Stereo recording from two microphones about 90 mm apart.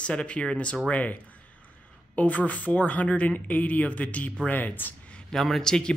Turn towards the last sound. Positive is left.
turn(degrees=5)  # may be behind; listen again after turning